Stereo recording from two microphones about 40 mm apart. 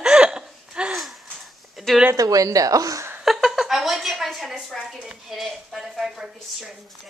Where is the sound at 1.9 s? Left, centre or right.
Centre.